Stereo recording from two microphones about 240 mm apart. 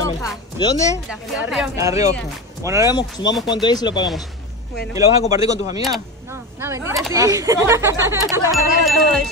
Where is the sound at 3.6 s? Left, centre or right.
Centre.